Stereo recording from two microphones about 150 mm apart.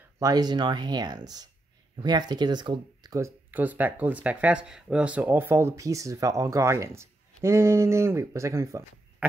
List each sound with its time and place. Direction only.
0.2 s speech: 25° right (ahead or behind)